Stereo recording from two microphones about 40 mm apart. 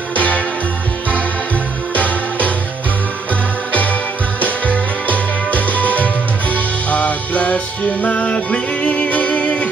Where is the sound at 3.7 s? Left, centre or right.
Left.